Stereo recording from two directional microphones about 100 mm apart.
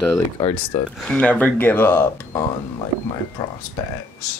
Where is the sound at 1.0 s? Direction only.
10° left (ahead or behind).